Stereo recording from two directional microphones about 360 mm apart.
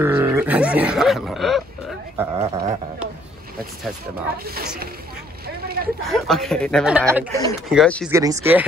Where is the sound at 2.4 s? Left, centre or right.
Centre.